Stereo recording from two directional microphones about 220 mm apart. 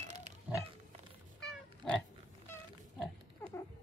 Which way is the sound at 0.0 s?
30° right (ahead or behind).